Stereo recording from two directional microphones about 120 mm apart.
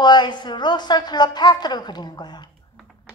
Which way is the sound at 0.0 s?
35° left (ahead or behind).